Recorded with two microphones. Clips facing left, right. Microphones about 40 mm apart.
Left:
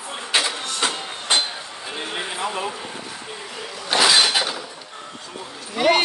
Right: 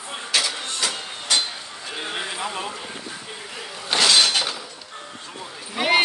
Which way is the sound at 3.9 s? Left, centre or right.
Centre.